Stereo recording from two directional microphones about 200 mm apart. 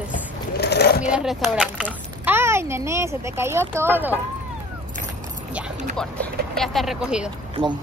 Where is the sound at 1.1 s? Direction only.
Centre (ahead or behind).